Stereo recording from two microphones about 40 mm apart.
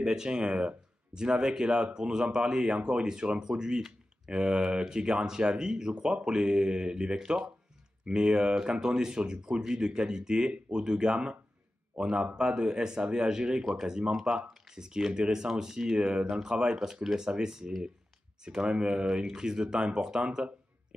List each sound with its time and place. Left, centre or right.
0.0 s speech: centre